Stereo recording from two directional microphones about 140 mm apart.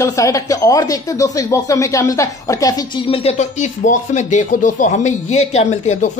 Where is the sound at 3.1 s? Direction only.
50° left (ahead or behind).